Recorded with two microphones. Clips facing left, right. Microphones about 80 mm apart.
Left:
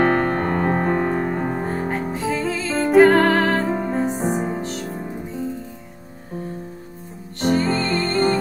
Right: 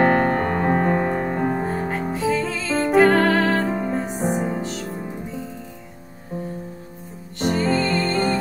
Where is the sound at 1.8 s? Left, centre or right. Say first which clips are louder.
Right 1 dB; centre.